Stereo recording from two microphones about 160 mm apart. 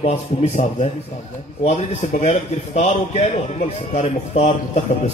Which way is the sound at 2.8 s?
40° left (ahead or behind).